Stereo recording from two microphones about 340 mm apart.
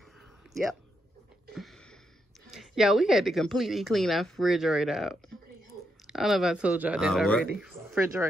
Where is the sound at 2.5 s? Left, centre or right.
Centre.